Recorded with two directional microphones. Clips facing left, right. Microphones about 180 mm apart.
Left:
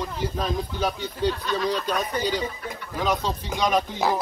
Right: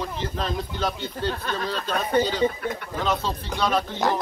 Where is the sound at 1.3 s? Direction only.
50° right (ahead or behind).